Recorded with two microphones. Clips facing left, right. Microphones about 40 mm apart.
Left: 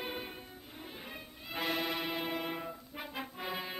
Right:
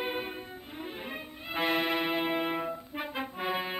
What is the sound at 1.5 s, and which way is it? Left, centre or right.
Music, right.